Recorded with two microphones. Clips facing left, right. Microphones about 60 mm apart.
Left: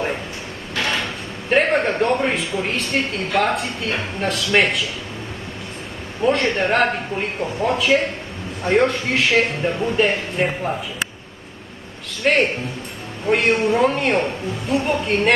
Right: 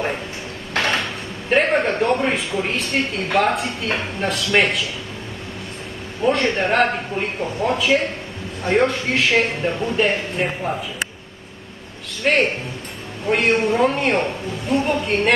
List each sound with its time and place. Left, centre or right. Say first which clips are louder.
0.7 s dishes: right 2 dB; right
1.5 s a sound: even; centre
2.6 s a woman's voice: even; centre
6.2 s a woman's voice: even; centre
12.2 s a woman's voice: left 1 dB; centre